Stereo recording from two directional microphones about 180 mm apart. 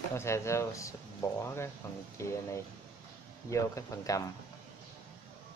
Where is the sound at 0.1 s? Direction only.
15° left (ahead or behind).